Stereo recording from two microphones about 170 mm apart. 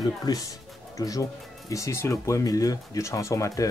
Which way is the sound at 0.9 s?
20° left (ahead or behind).